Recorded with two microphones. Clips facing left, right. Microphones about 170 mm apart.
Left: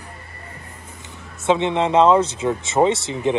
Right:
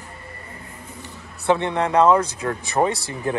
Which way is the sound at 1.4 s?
20° left (ahead or behind).